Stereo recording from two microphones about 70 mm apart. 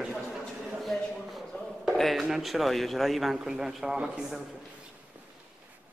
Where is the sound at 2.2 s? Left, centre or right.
Centre.